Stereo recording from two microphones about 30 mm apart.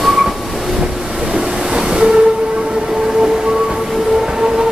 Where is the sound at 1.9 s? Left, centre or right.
Right.